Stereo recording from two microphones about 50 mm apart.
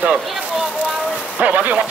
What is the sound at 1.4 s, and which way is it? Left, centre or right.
Speech, right.